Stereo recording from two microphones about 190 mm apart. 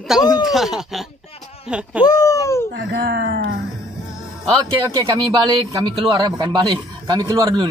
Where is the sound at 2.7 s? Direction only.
55° right (ahead or behind).